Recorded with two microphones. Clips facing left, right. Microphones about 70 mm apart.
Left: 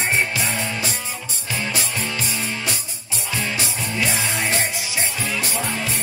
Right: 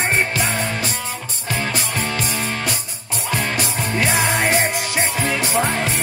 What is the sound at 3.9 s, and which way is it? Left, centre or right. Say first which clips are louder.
Music: right 5 dB; right.